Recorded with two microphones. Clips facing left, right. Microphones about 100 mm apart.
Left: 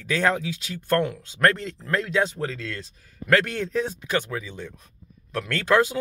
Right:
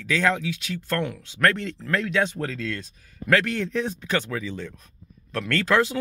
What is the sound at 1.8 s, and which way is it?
Speech, 25° left (ahead or behind).